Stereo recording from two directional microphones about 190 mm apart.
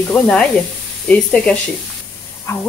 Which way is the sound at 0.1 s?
5° left (ahead or behind).